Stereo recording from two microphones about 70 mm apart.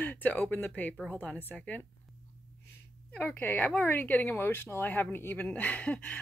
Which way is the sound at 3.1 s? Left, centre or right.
Left.